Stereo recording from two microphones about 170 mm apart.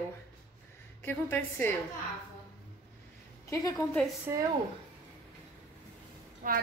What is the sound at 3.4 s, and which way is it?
Speech, 15° left (ahead or behind).